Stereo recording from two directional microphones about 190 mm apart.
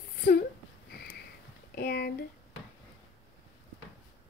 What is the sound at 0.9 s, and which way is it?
Sniff, 55° left (ahead or behind).